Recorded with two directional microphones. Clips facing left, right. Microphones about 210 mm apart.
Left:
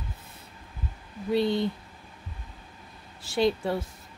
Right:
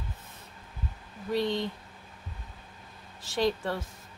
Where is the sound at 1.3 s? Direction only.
10° left (ahead or behind).